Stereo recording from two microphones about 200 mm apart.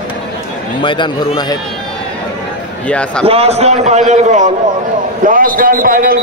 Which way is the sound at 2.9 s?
5° left (ahead or behind).